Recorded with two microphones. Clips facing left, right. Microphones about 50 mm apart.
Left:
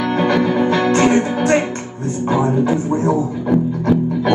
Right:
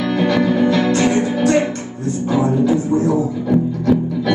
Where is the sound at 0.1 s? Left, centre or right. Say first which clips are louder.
Even; left.